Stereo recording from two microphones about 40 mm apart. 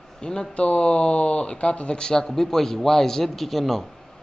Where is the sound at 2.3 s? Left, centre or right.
Centre.